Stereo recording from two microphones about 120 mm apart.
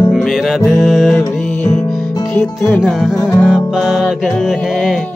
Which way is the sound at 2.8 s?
5° right (ahead or behind).